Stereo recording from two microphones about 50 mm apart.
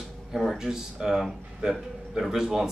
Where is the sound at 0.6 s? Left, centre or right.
Centre.